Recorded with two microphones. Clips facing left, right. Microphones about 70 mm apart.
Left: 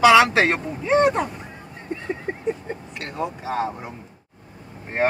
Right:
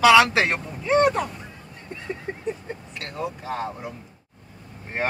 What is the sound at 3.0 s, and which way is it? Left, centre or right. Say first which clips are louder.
Speech: left 3 dB; centre.